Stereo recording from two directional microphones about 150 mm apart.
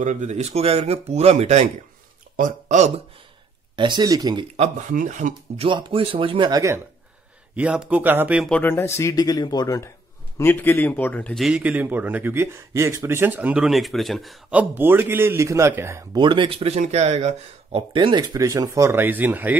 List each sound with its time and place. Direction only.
0.0 s speech: 55° right (ahead or behind)
2.3 s speech: 55° right (ahead or behind)
3.7 s speech: 30° right (ahead or behind)
4.6 s speech: 55° right (ahead or behind)
5.6 s speech: 35° right (ahead or behind)
7.5 s speech: 5° right (ahead or behind)
8.5 s speech: 10° left (ahead or behind)
10.3 s speech: 15° left (ahead or behind)
11.3 s speech: 5° right (ahead or behind); by 16.2 s 20° right (ahead or behind)
16.2 s speech: 35° right (ahead or behind); by 19.5 s 10° right (ahead or behind)